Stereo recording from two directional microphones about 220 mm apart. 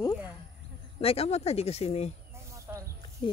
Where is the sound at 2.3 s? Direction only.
15° right (ahead or behind).